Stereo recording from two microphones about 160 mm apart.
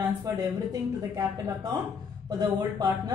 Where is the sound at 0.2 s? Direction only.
25° right (ahead or behind).